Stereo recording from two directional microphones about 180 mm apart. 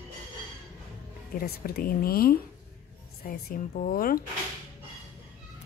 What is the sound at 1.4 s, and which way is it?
Speech, 55° left (ahead or behind).